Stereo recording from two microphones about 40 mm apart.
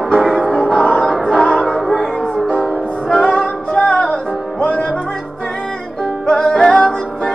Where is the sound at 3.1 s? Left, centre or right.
Left.